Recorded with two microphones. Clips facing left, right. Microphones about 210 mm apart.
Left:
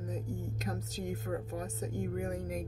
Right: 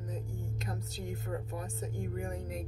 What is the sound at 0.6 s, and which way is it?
Speech, 45° left (ahead or behind).